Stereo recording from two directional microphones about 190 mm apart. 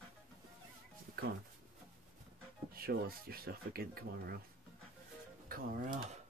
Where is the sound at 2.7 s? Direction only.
50° right (ahead or behind).